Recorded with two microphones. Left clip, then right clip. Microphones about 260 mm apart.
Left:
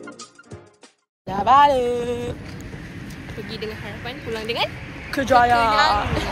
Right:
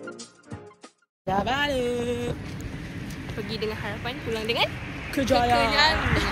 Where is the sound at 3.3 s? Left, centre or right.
Centre.